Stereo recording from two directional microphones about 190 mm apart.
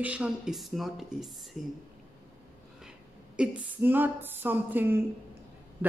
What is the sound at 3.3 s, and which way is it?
Speech, 10° right (ahead or behind).